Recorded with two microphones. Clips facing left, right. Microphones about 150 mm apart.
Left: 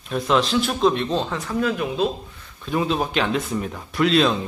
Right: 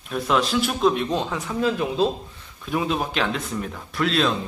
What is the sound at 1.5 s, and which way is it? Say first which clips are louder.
Speech: even; 25° right (ahead or behind).